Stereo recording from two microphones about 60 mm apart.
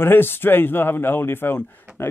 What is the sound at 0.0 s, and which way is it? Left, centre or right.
Speech, left.